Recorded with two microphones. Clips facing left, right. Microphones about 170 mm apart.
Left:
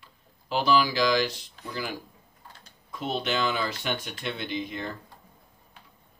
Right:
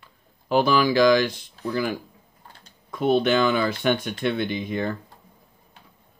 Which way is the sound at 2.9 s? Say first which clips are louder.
Right 10 dB; 55° right (ahead or behind).